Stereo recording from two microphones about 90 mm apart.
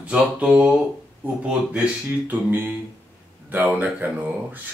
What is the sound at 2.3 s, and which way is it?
Speech, 20° right (ahead or behind).